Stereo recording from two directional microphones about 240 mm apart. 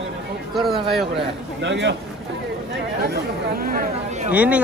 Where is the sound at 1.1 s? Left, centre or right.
Right.